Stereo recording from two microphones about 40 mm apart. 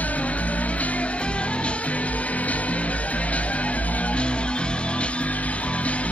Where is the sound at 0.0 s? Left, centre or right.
Left.